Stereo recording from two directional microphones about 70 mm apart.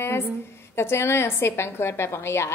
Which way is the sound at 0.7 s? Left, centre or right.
Left.